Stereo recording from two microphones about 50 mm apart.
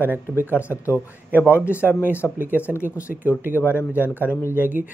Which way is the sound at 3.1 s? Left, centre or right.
Right.